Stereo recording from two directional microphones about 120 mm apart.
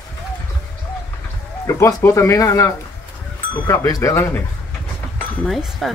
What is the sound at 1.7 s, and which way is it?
Speech, 25° left (ahead or behind).